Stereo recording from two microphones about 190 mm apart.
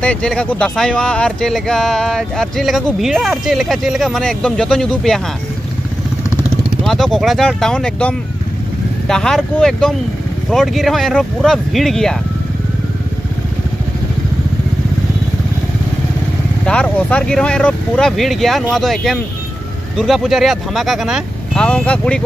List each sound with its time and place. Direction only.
0.0 s speech: 5° left (ahead or behind)
6.8 s speech: centre (ahead or behind)
16.6 s speech: 5° left (ahead or behind)